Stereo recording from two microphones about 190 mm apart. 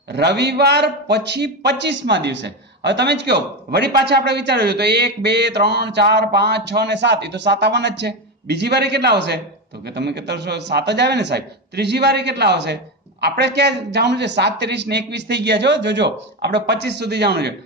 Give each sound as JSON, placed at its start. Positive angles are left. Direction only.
{"t": 0.1, "sound": "a man's voice", "side_deg": -60}